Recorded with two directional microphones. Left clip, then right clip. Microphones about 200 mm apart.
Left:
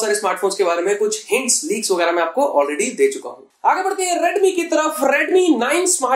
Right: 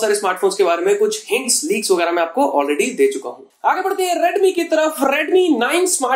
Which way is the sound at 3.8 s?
35° right (ahead or behind).